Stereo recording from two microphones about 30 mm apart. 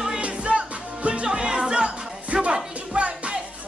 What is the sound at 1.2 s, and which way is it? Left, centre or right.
Music, right.